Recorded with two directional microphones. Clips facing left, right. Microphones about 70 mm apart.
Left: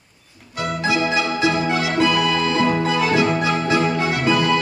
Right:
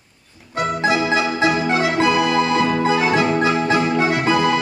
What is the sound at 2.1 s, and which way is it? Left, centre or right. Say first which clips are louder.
Music: right 2 dB; right.